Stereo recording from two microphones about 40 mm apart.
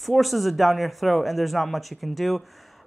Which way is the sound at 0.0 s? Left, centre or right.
Centre.